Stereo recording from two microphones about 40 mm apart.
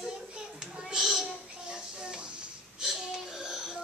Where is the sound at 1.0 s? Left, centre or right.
Centre.